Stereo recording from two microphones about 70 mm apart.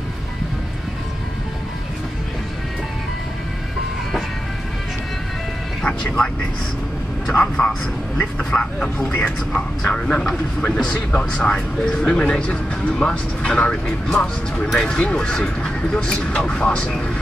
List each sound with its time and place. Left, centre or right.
5.8 s vehicle: centre
7.3 s speech: centre
9.0 s a man's voice: left